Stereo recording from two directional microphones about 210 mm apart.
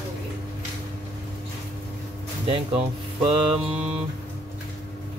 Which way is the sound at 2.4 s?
25° right (ahead or behind).